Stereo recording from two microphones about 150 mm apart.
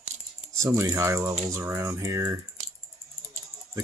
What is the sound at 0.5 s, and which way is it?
Speech, 20° right (ahead or behind).